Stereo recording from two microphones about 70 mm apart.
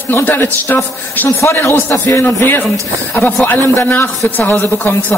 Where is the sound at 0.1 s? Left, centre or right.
Left.